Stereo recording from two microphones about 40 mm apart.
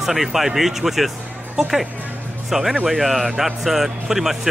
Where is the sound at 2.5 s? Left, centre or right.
Centre.